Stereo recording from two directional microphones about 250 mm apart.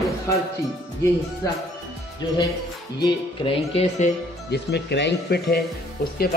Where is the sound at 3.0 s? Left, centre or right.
Centre.